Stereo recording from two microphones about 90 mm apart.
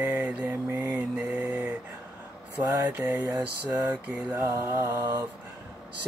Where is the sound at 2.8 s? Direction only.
20° right (ahead or behind).